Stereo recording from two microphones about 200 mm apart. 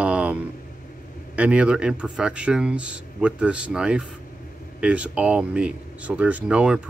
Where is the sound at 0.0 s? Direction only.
5° right (ahead or behind).